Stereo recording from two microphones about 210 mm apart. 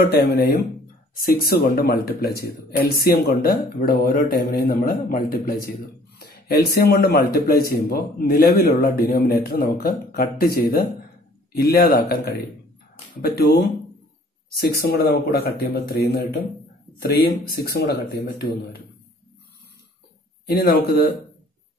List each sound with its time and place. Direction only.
0.1 s speech: 50° left (ahead or behind)
14.9 s speech: 50° left (ahead or behind)
20.4 s speech: 50° left (ahead or behind)